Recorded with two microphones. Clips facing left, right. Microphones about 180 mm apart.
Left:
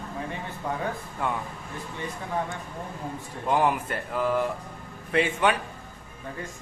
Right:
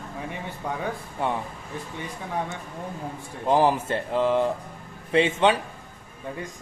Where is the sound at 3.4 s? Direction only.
30° right (ahead or behind).